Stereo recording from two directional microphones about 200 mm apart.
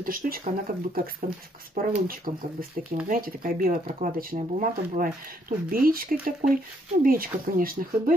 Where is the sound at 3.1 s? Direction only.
45° right (ahead or behind).